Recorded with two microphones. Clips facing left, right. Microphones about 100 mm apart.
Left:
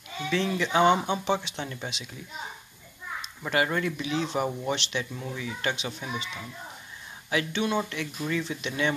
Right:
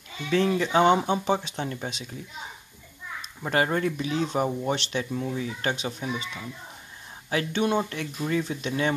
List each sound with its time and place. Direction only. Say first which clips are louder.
0.3 s speech: right 4 dB; 45° right (ahead or behind)
3.4 s speech: right 2 dB; 35° right (ahead or behind)
7.2 s speech: right 2 dB; 40° right (ahead or behind)